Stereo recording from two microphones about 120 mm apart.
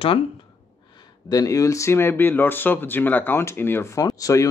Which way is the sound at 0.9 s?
35° left (ahead or behind).